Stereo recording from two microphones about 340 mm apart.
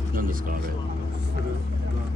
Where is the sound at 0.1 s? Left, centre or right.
Right.